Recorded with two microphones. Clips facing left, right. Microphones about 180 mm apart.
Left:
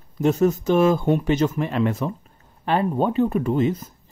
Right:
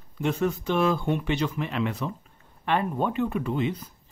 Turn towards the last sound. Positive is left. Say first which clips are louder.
# left 6 dB
turn(degrees=45)  # may be behind; listen again after turning